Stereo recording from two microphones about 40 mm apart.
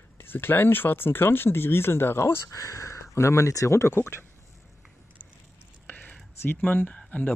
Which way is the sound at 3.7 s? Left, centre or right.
Left.